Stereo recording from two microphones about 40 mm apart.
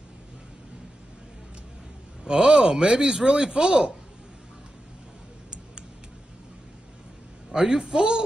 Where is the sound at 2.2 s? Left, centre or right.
Centre.